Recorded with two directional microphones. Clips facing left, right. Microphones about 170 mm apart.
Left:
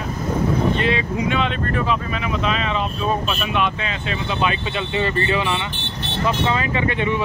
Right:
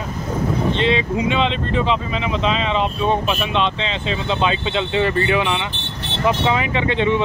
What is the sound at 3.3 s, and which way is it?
Speech, 20° right (ahead or behind).